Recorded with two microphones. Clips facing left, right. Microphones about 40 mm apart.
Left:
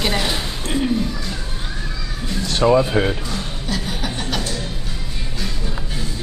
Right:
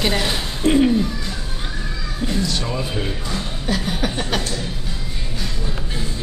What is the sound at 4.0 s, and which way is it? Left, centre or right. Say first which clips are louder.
Chuckle: right 3 dB; right.